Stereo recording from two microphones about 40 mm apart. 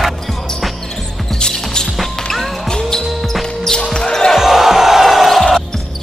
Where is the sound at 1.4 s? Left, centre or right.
Centre.